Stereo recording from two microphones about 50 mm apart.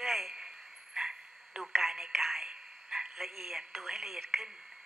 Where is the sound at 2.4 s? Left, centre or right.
Centre.